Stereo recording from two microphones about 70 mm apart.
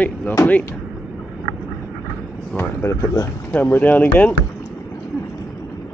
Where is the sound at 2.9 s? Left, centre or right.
Left.